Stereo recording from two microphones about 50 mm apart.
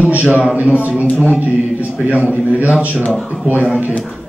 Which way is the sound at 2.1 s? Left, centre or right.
Right.